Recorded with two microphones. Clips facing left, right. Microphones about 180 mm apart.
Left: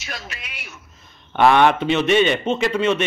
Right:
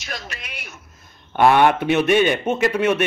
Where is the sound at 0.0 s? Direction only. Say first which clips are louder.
Right 1 dB; 5° left (ahead or behind).